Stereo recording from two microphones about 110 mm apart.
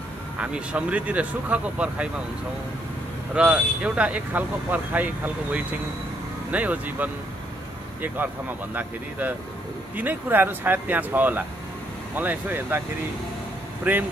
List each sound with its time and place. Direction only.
0.4 s speech: 10° right (ahead or behind)
3.3 s speech: 10° right (ahead or behind)
13.9 s speech: 15° right (ahead or behind)